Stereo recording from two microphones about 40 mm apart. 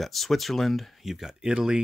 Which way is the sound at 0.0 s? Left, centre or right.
Centre.